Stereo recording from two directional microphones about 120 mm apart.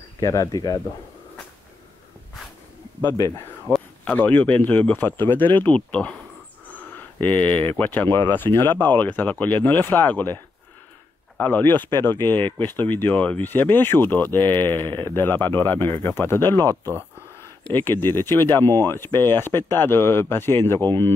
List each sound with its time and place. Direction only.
0.2 s speech: 30° left (ahead or behind)
3.6 s speech: 10° left (ahead or behind)